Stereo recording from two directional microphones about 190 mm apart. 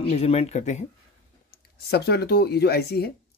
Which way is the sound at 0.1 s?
35° left (ahead or behind).